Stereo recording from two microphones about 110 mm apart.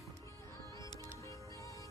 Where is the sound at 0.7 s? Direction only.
30° left (ahead or behind).